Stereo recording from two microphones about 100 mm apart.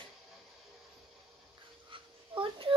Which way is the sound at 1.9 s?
60° right (ahead or behind).